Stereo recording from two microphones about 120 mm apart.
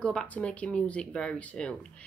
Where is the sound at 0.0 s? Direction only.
10° left (ahead or behind).